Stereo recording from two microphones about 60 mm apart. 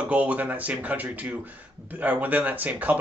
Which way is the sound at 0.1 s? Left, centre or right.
Right.